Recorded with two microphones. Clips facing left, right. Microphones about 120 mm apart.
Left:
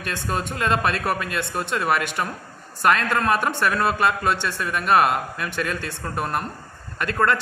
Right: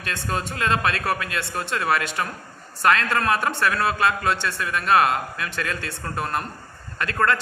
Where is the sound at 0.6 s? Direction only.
10° left (ahead or behind).